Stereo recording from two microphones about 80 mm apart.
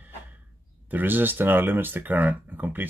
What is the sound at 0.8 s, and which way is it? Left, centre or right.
Speech, right.